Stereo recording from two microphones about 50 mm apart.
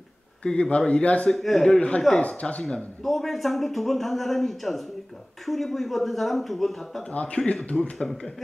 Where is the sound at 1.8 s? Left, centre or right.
Left.